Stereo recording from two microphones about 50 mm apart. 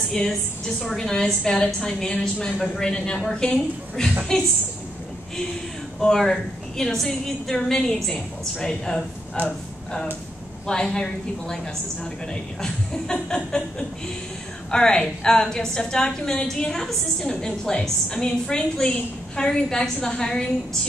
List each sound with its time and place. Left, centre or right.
0.1 s a woman's voice: centre
5.9 s a woman's voice: centre
10.7 s a woman's voice: centre